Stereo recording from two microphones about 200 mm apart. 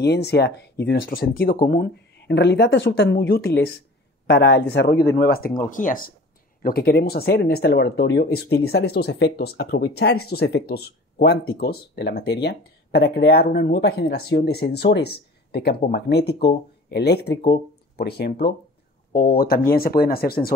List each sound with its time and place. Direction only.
0.0 s speech: 55° left (ahead or behind)